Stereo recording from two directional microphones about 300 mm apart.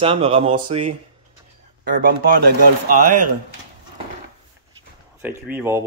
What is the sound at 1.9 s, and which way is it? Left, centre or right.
Speech, right.